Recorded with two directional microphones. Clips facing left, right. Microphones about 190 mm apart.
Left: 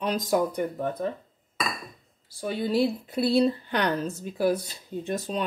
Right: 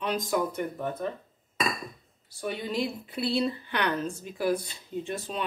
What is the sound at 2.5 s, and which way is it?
Speech, 40° left (ahead or behind).